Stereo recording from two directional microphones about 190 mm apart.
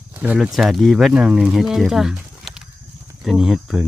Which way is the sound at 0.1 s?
5° right (ahead or behind).